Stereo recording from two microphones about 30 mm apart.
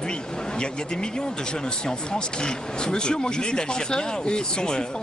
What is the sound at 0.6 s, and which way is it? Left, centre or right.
Speech, left.